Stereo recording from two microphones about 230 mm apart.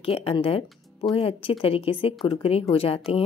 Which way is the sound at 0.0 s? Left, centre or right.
Left.